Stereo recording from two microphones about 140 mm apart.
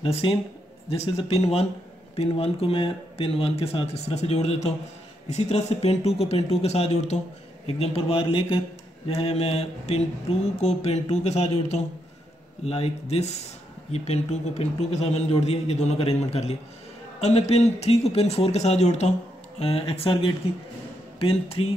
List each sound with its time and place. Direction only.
0.0 s a man's voice: 40° left (ahead or behind)